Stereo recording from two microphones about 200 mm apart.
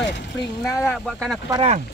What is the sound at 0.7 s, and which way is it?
Speech, 15° left (ahead or behind).